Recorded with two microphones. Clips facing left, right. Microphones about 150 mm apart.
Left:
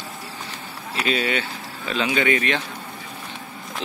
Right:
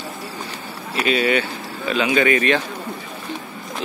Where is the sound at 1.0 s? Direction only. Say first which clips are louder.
Right 5 dB; 30° left (ahead or behind).